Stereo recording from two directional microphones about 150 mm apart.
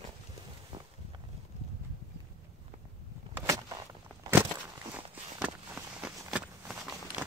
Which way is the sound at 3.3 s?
20° right (ahead or behind).